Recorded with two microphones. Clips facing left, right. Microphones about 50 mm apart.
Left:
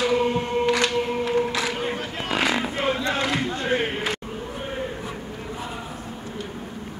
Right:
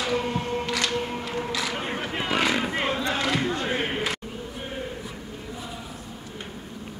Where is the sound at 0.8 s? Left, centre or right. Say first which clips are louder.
Left 5 dB; left.